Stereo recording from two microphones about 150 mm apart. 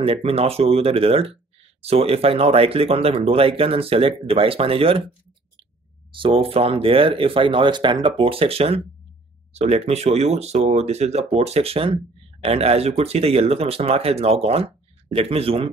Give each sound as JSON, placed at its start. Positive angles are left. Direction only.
{"t": 0.0, "sound": "speech", "side_deg": -40}
{"t": 6.1, "sound": "speech", "side_deg": -35}